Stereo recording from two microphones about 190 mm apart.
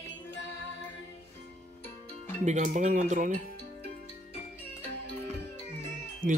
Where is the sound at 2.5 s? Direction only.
40° right (ahead or behind).